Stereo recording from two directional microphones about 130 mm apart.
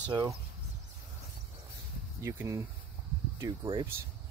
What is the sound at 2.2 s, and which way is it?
Speech, 20° right (ahead or behind).